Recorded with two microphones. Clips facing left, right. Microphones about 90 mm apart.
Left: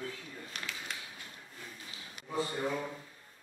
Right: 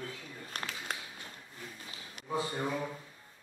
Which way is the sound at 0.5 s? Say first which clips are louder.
Right 4 dB; 45° right (ahead or behind).